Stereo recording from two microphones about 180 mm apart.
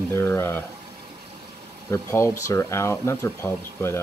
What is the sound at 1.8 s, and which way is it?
Speech, 15° left (ahead or behind).